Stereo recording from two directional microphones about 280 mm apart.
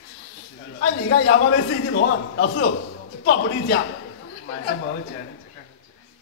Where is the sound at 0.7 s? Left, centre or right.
Left.